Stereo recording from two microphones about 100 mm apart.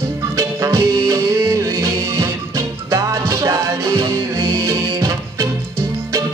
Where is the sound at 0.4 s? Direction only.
30° right (ahead or behind).